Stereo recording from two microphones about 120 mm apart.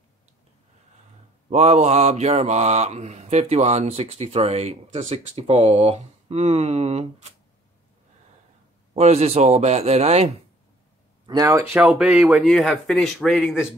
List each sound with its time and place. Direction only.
1.5 s mantra: 65° right (ahead or behind)
8.9 s mantra: 60° right (ahead or behind)
11.2 s speech: 30° right (ahead or behind)
11.8 s a man's voice: 5° right (ahead or behind)